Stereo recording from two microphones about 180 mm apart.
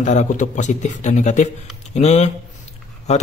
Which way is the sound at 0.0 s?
40° left (ahead or behind).